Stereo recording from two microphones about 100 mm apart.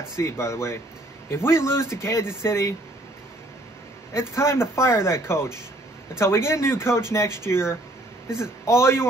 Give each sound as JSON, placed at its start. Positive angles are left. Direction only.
{"t": 0.2, "sound": "speech", "side_deg": 30}
{"t": 4.1, "sound": "speech", "side_deg": 25}